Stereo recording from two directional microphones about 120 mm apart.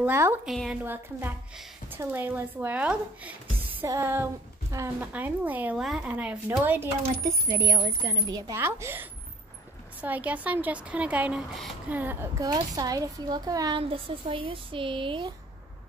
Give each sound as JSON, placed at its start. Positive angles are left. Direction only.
{"t": 0.0, "sound": "a woman's voice", "side_deg": -20}
{"t": 0.5, "sound": "a woman's voice", "side_deg": 0}
{"t": 1.9, "sound": "speech", "side_deg": -15}
{"t": 3.8, "sound": "a woman's voice", "side_deg": -20}
{"t": 7.4, "sound": "a woman's voice", "side_deg": -30}
{"t": 8.5, "sound": "a woman's voice", "side_deg": -20}
{"t": 12.4, "sound": "a child's voice", "side_deg": -30}
{"t": 13.7, "sound": "speech", "side_deg": -45}